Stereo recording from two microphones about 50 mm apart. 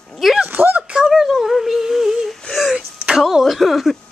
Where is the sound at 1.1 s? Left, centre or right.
Centre.